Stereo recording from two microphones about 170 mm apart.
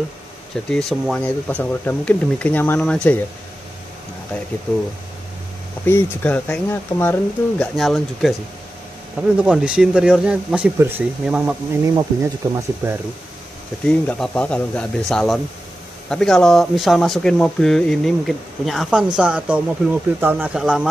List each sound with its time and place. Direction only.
0.7 s speech: 5° left (ahead or behind)
5.9 s speech: 10° left (ahead or behind)
9.4 s speech: 5° right (ahead or behind)
13.8 s speech: 5° left (ahead or behind)